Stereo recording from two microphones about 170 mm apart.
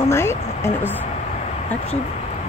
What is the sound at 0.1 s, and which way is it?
Speech, 15° left (ahead or behind).